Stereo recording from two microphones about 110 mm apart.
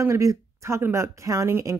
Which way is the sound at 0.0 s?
30° right (ahead or behind).